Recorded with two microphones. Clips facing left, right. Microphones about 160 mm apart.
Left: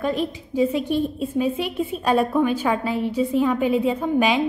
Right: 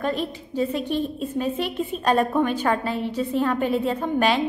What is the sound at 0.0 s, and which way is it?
A woman's voice, 10° left (ahead or behind).